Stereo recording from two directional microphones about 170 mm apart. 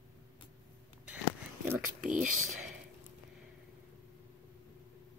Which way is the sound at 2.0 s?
50° right (ahead or behind).